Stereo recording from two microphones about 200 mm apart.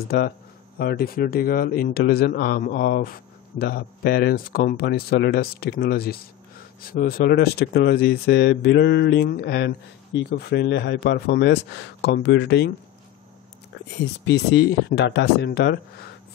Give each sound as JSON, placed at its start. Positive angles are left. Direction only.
{"t": 0.7, "sound": "speech", "side_deg": 50}
{"t": 14.2, "sound": "speech", "side_deg": 55}